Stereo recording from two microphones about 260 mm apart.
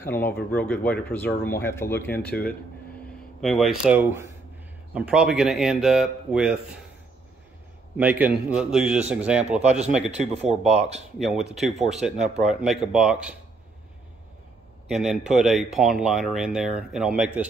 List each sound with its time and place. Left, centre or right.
0.0 s speech: centre
3.3 s speech: centre
8.0 s speech: centre
9.7 s speech: right
11.1 s speech: centre
14.9 s speech: centre